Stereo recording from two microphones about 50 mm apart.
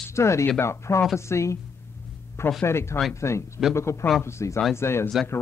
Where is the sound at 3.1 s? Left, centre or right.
Left.